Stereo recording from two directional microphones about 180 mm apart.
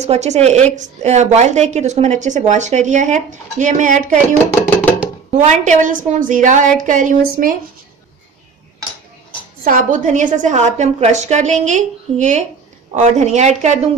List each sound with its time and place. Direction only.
0.0 s a woman's voice: 40° right (ahead or behind)
9.7 s a woman's voice: 45° right (ahead or behind)